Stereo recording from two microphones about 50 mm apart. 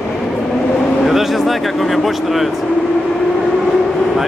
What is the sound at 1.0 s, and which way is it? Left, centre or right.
Speech, centre.